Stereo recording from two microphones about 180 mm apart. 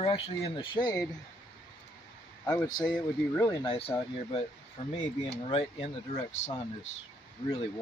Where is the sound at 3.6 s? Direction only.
30° left (ahead or behind).